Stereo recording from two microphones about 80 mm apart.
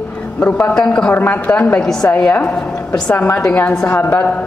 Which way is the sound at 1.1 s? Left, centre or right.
Left.